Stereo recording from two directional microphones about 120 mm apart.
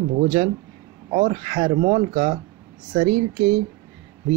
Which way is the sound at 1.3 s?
70° right (ahead or behind).